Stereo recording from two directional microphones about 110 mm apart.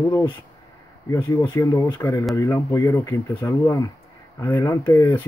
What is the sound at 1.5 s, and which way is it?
Speech, 25° left (ahead or behind).